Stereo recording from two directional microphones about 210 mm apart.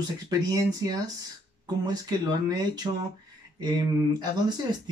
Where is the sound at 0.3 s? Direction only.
15° right (ahead or behind).